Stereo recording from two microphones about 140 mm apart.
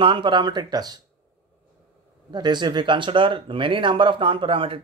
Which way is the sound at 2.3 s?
30° right (ahead or behind).